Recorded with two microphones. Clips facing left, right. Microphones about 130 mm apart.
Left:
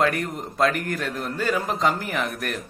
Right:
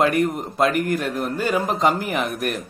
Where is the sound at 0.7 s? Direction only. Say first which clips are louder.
Right 5 dB; centre (ahead or behind).